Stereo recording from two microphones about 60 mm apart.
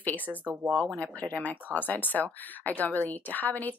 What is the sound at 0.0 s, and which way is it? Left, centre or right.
Speech, left.